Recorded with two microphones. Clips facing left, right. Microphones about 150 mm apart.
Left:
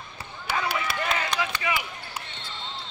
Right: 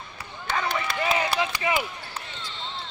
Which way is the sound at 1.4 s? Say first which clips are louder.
Right 3 dB; 25° right (ahead or behind).